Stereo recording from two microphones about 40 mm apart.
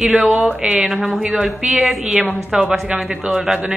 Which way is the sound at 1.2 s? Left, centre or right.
Centre.